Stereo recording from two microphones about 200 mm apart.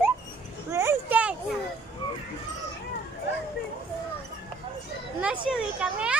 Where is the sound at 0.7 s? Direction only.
15° right (ahead or behind).